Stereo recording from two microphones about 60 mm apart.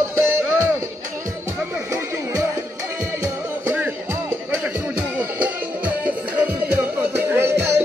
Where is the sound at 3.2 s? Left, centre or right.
Right.